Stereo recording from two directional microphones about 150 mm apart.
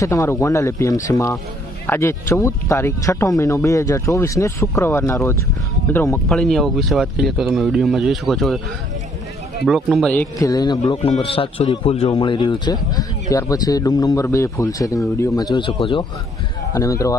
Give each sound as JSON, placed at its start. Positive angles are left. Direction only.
{"t": 0.0, "sound": "speech", "side_deg": 20}
{"t": 6.2, "sound": "speech", "side_deg": 5}
{"t": 9.7, "sound": "speech", "side_deg": 0}
{"t": 10.1, "sound": "speech", "side_deg": 25}
{"t": 11.1, "sound": "speech", "side_deg": 35}
{"t": 16.7, "sound": "speech", "side_deg": 20}